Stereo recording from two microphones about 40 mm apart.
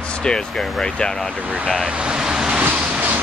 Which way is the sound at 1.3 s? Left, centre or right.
Right.